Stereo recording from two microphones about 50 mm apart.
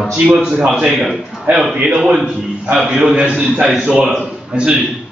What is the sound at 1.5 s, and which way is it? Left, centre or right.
Speech, right.